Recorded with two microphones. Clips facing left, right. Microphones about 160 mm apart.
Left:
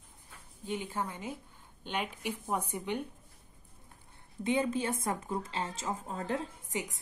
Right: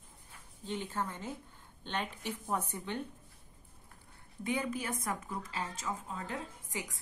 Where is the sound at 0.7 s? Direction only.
10° left (ahead or behind).